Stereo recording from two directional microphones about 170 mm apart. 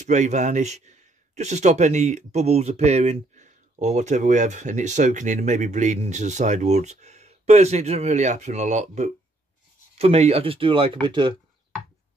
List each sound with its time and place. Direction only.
0.0 s a man's voice: 45° right (ahead or behind); by 11.3 s 30° right (ahead or behind)